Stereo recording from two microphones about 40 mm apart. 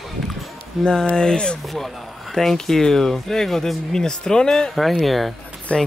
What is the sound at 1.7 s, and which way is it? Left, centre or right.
Speech, centre.